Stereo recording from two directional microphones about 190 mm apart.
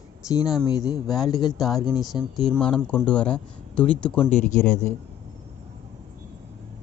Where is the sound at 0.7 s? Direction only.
20° left (ahead or behind).